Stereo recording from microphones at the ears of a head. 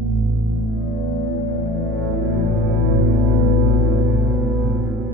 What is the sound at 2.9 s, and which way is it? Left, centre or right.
Music, right.